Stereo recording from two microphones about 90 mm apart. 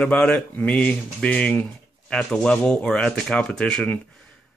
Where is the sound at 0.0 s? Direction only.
10° left (ahead or behind).